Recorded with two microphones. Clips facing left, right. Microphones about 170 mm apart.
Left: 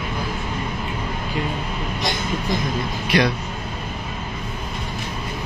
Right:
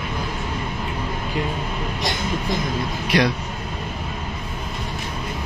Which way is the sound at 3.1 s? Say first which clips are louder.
Even; centre (ahead or behind).